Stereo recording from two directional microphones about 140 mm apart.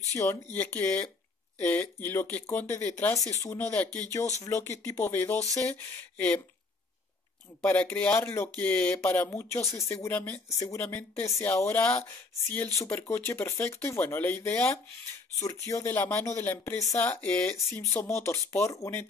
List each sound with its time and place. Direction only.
0.1 s speech: 20° left (ahead or behind)
7.6 s speech: 10° left (ahead or behind)